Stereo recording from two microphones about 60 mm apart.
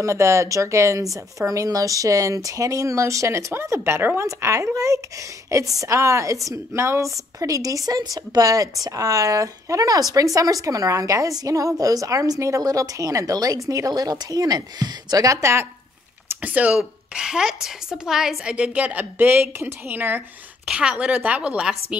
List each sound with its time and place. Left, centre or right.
0.0 s speech: right
1.1 s a woman's voice: right
6.8 s a woman's voice: right
16.3 s a woman's voice: right
20.6 s a woman's voice: centre